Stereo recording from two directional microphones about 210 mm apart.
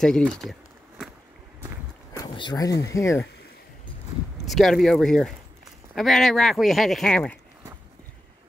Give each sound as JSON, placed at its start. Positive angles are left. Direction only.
{"t": 0.0, "sound": "a sound", "side_deg": 5}
{"t": 2.1, "sound": "speech", "side_deg": 20}
{"t": 4.5, "sound": "speech", "side_deg": 0}